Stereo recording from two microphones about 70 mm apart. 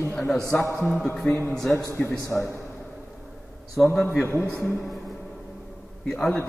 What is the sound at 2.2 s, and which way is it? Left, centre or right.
Speech, left.